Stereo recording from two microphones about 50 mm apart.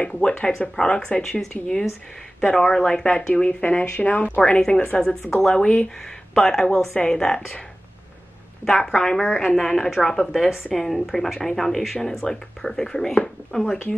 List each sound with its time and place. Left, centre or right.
0.0 s speech: centre
4.6 s speech: centre
5.5 s speech: left
6.3 s speech: centre
8.6 s speech: centre
9.8 s a woman's voice: centre